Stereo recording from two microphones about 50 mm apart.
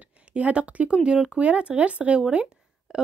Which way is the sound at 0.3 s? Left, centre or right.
Right.